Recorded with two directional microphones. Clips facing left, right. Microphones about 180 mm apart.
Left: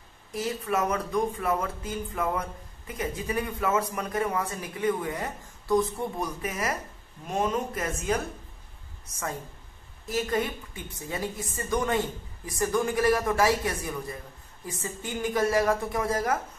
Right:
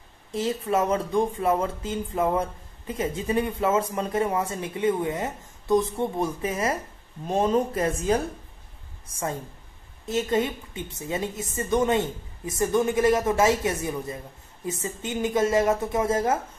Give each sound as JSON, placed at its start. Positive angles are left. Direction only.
{"t": 0.3, "sound": "a woman's voice", "side_deg": -25}